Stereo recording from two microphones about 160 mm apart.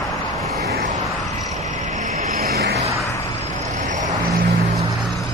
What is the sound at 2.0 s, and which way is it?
Vehicle, 50° right (ahead or behind).